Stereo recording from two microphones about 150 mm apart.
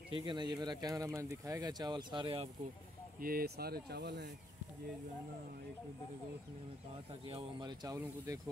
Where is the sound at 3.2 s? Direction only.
85° right.